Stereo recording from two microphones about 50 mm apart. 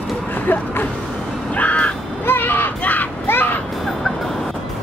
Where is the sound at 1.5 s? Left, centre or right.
Left.